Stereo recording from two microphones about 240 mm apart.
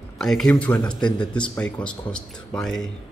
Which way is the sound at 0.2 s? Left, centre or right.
Centre.